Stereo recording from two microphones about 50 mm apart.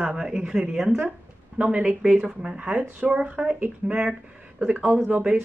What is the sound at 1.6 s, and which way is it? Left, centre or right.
Speech, right.